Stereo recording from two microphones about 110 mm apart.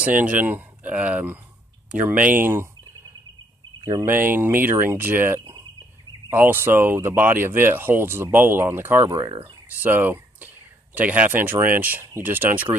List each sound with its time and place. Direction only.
0.0 s speech: 15° right (ahead or behind)
3.8 s speech: 25° right (ahead or behind)
9.0 s speech: 40° right (ahead or behind)
9.8 s speech: 15° right (ahead or behind)